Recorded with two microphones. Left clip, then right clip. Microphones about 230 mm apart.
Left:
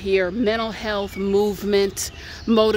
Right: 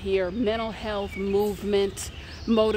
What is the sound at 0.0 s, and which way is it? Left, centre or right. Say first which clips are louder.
Speech: left 5 dB; left.